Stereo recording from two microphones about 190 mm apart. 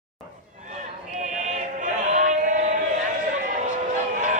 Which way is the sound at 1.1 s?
40° right (ahead or behind).